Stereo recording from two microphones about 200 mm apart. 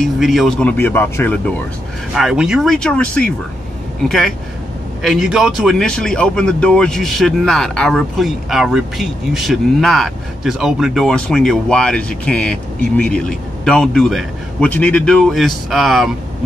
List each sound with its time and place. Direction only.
0.0 s speech: centre (ahead or behind)
2.1 s speech: centre (ahead or behind)
5.0 s speech: centre (ahead or behind)